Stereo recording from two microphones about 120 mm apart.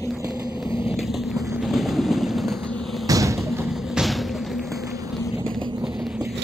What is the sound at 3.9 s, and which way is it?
Music, centre (ahead or behind).